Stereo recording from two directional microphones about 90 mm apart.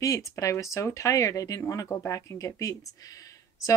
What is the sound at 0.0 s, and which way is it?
A woman's voice, 35° left (ahead or behind).